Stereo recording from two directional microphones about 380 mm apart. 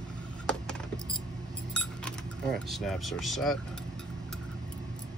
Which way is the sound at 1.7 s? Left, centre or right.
Centre.